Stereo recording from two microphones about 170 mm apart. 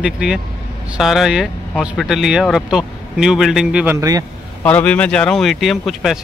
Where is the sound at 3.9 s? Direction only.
20° right (ahead or behind).